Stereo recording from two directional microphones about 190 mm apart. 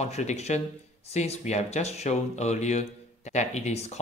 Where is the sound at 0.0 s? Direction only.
35° left (ahead or behind).